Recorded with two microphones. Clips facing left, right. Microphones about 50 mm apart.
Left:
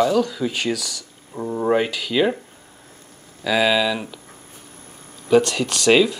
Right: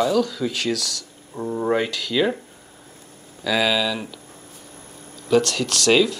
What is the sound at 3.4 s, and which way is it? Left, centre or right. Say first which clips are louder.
Speech: left 2 dB; centre.